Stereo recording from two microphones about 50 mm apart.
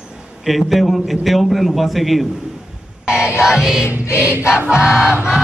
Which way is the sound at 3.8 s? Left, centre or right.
Left.